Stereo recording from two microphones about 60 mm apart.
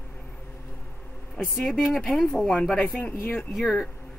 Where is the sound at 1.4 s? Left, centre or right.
Centre.